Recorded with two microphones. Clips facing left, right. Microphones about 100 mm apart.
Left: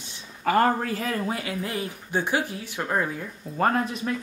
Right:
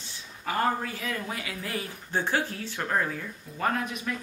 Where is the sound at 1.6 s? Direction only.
20° left (ahead or behind).